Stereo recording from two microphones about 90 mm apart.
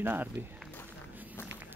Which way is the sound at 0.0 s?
25° right (ahead or behind).